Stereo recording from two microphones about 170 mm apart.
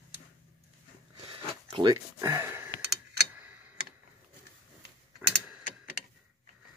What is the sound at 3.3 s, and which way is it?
Tick-tock, 10° right (ahead or behind).